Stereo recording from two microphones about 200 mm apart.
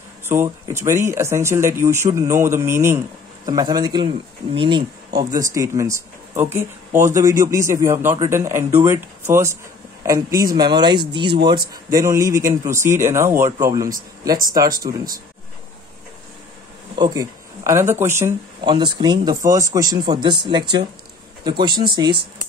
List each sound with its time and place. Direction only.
0.3 s speech: 10° right (ahead or behind)
16.9 s speech: 20° right (ahead or behind)
18.6 s speech: 25° right (ahead or behind)